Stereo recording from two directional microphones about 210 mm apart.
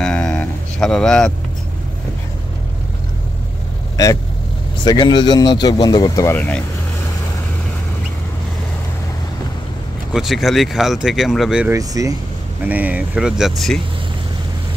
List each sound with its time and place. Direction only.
0.0 s a sound: 5° left (ahead or behind)
3.9 s vehicle: 15° left (ahead or behind)
4.8 s speech: 20° left (ahead or behind)
10.1 s speech: centre (ahead or behind)
11.7 s speech: 15° right (ahead or behind); by 13.7 s centre (ahead or behind)